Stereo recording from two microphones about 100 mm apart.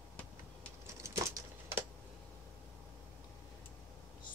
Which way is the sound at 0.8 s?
30° right (ahead or behind).